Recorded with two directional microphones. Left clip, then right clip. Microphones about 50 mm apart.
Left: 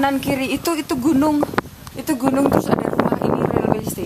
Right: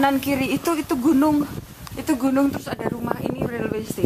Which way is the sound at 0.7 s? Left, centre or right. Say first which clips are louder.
Even; left.